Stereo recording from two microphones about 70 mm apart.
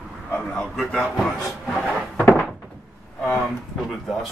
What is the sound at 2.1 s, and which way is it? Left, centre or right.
Thunk, centre.